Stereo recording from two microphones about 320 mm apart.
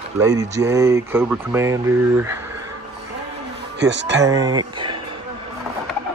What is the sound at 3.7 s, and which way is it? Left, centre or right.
Speech, right.